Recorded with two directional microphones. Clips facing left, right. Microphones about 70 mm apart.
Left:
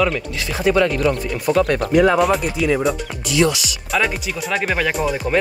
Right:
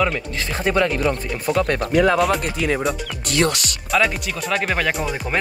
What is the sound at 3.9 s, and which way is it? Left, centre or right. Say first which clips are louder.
Speech: right 1 dB; centre.